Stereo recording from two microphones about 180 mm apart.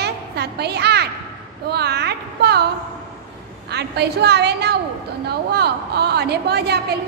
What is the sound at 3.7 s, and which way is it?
A woman's voice, 65° right (ahead or behind).